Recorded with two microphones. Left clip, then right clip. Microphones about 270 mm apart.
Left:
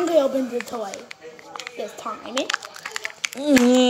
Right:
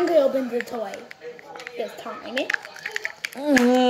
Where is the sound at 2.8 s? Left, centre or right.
Centre.